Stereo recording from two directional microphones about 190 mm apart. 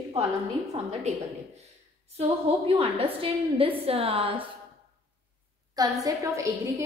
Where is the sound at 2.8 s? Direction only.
30° right (ahead or behind).